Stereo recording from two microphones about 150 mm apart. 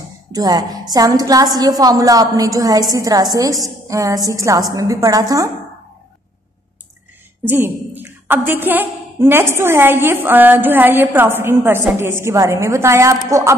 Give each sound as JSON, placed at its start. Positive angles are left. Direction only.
{"t": 0.3, "sound": "a woman's voice", "side_deg": -25}
{"t": 7.4, "sound": "a woman's voice", "side_deg": -15}